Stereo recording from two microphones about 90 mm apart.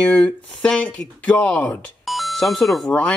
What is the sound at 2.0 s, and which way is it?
Doorbell, centre (ahead or behind).